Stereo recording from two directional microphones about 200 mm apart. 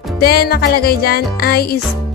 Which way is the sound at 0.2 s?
50° left (ahead or behind).